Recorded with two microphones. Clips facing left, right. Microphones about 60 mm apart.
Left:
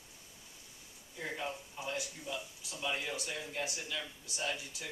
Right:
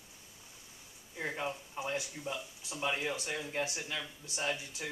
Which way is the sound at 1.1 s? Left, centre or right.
Right.